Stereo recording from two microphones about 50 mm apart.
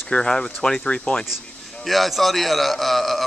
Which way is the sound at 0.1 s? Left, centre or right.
Centre.